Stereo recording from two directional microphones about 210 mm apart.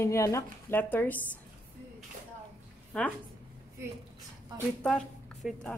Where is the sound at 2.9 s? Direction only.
5° left (ahead or behind).